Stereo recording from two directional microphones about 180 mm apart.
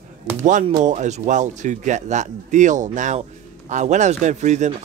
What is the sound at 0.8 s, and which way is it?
Speech, 40° right (ahead or behind).